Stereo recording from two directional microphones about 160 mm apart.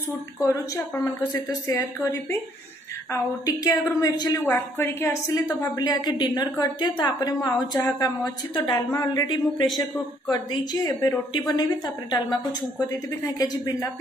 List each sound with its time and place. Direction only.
0.4 s a woman's voice: 20° left (ahead or behind)